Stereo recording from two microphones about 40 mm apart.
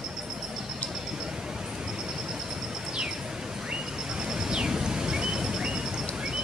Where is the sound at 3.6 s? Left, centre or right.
Centre.